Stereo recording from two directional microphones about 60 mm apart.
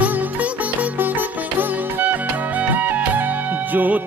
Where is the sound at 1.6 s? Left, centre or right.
Right.